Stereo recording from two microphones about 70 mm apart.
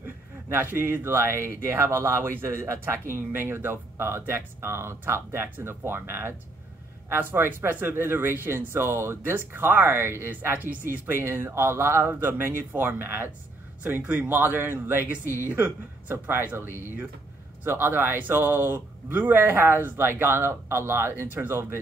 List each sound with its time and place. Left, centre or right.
0.0 s speech: right